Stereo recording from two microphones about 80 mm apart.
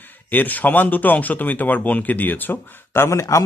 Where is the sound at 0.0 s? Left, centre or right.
Left.